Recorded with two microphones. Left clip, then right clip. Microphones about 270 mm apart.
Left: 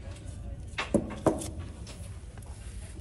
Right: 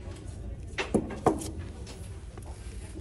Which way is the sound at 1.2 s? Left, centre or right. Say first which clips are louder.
Right 3 dB; centre.